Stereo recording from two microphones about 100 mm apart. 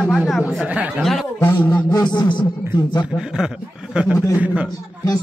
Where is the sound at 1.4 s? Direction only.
20° left (ahead or behind).